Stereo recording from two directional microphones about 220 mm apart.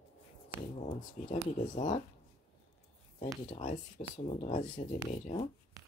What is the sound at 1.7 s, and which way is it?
Speech, 35° left (ahead or behind).